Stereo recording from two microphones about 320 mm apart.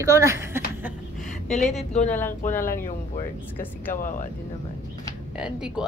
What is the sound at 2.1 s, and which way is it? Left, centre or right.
Speech, centre.